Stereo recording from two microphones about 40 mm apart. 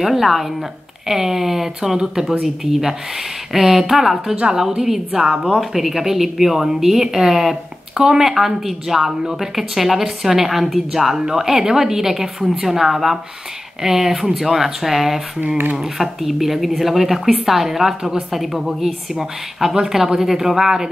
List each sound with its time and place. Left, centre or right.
0.0 s speech: centre
5.1 s a woman's voice: right
5.6 s speech: centre